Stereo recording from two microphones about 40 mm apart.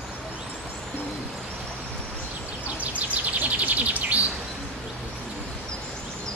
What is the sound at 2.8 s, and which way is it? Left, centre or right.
Bird, right.